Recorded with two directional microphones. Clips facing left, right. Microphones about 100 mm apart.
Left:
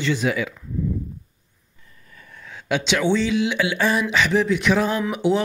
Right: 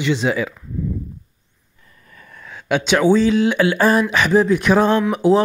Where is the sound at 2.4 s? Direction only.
50° right (ahead or behind).